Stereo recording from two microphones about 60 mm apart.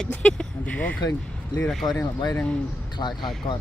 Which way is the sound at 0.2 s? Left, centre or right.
Centre.